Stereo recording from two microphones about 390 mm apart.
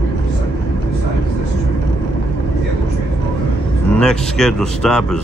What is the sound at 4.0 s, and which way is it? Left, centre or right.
A man's voice, centre.